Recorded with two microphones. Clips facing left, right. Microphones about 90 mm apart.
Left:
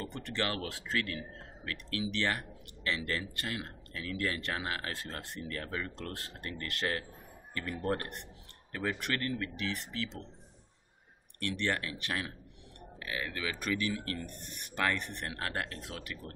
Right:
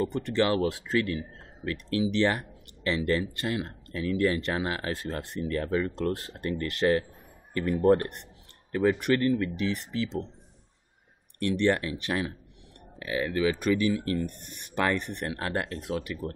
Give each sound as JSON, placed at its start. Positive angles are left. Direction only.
{"t": 0.2, "sound": "speech", "side_deg": -20}
{"t": 7.6, "sound": "speech", "side_deg": -40}
{"t": 9.0, "sound": "speech", "side_deg": -20}
{"t": 11.3, "sound": "speech", "side_deg": -20}